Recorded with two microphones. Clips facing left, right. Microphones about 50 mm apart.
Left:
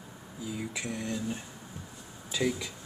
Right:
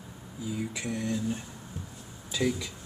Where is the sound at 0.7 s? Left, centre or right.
Centre.